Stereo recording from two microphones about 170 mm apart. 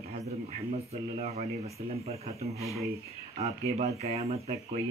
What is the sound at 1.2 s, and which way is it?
Speech, 40° right (ahead or behind).